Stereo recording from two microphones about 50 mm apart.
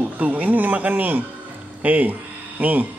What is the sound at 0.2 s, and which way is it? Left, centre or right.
Speech, right.